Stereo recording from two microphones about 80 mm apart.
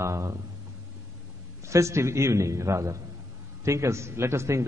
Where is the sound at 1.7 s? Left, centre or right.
Right.